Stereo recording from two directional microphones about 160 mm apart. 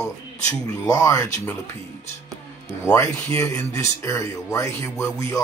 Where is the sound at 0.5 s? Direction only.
20° left (ahead or behind).